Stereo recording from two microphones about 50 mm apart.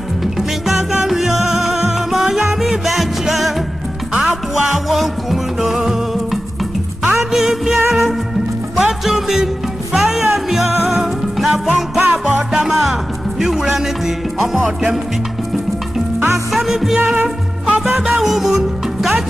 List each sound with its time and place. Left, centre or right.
0.4 s music: centre
8.7 s music: centre
12.1 s music: right
12.5 s music: centre
16.5 s music: centre